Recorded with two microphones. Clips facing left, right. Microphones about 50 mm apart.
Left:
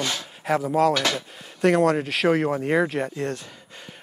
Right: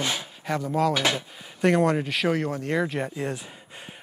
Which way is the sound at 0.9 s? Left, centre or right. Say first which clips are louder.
Left 1 dB; centre.